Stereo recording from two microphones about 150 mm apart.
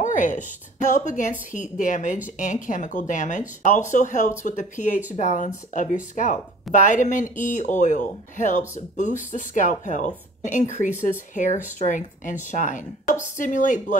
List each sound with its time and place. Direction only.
0.0 s speech: 55° left (ahead or behind)